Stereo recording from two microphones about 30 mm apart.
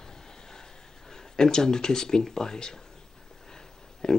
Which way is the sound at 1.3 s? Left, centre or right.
Left.